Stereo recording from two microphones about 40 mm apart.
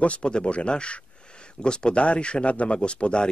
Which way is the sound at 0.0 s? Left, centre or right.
Left.